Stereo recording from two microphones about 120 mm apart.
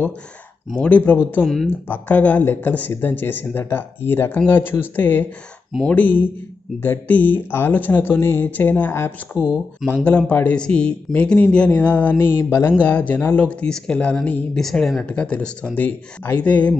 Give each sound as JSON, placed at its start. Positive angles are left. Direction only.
{"t": 0.7, "sound": "speech", "side_deg": 10}